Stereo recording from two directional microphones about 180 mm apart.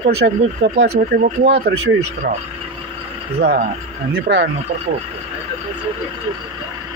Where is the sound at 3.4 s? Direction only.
55° right (ahead or behind).